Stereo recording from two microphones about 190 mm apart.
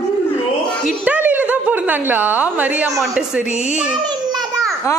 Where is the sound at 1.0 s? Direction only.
10° right (ahead or behind).